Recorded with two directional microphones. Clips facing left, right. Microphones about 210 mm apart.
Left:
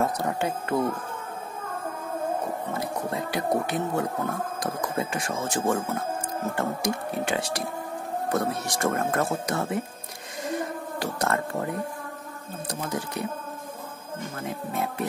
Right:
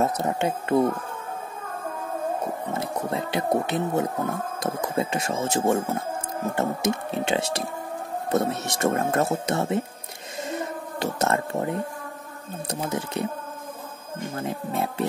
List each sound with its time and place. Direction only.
0.0 s speech: 20° right (ahead or behind)
2.8 s speech: 25° right (ahead or behind)
10.5 s a sound: 25° right (ahead or behind)
12.9 s speech: 25° right (ahead or behind)
14.3 s speech: 30° right (ahead or behind)